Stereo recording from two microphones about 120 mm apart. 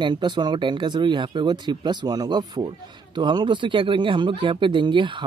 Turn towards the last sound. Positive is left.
turn(degrees=-40)  # may be behind; listen again after turning